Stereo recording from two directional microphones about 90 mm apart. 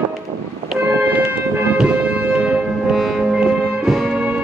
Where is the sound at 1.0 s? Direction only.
15° right (ahead or behind).